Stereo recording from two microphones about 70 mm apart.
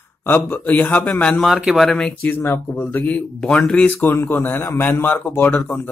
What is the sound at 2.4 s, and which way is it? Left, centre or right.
Speech, left.